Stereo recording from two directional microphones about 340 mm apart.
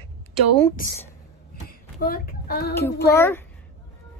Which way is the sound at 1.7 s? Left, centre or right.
Left.